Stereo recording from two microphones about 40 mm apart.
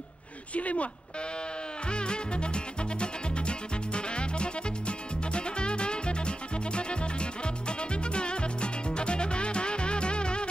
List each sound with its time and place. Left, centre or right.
0.6 s speech: left
1.9 s music: left